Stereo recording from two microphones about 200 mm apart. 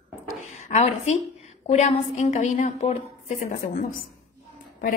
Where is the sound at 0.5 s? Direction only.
35° left (ahead or behind).